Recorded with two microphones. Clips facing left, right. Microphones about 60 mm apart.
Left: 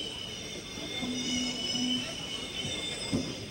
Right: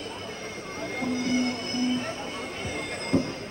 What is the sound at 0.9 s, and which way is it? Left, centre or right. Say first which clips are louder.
Music: right 8 dB; right.